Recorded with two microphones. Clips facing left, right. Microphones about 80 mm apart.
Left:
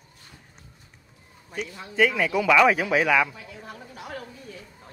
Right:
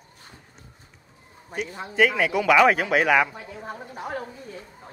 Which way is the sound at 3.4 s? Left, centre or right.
Right.